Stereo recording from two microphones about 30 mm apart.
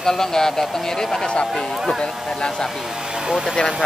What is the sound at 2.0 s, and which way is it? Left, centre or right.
Speech, left.